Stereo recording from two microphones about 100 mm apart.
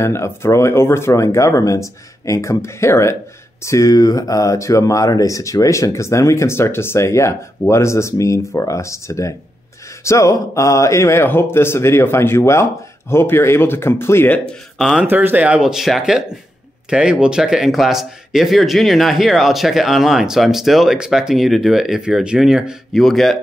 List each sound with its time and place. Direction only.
0.0 s speech: 25° left (ahead or behind)
14.4 s speech: 5° left (ahead or behind)
15.0 s speech: 20° right (ahead or behind); by 23.3 s centre (ahead or behind)